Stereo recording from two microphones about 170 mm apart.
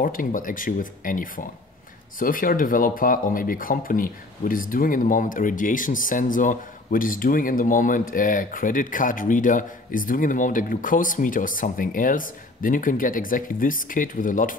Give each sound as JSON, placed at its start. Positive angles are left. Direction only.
{"t": 0.0, "sound": "speech", "side_deg": 55}